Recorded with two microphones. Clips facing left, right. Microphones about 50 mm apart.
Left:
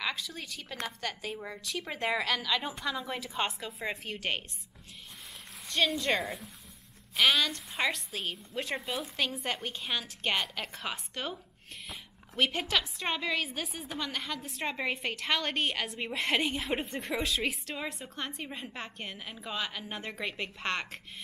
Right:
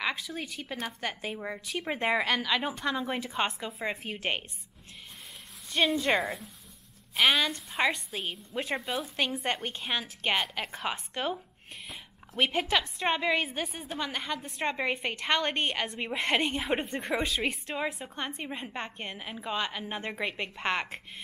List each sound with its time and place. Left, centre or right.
0.0 s a woman's voice: centre
5.7 s a woman's voice: centre
7.2 s a woman's voice: centre